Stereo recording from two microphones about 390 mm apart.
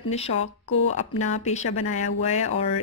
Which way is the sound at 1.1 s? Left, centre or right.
Centre.